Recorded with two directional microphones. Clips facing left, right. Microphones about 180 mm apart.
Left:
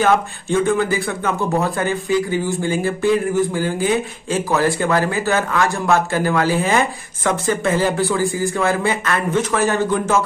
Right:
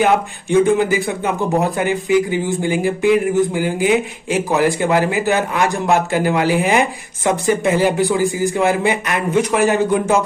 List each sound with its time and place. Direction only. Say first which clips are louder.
0.0 s speech: right 1 dB; 20° right (ahead or behind)